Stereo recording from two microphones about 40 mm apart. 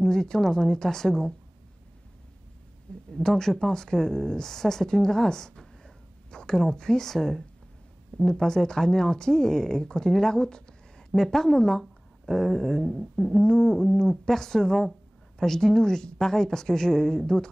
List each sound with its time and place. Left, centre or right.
0.0 s speech: centre
3.1 s speech: centre